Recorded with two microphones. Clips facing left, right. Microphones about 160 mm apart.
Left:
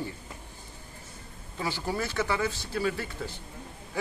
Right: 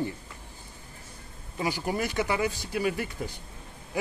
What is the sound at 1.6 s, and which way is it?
Speech, 15° right (ahead or behind).